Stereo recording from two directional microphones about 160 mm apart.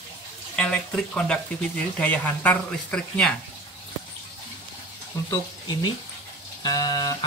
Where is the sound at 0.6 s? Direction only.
5° left (ahead or behind).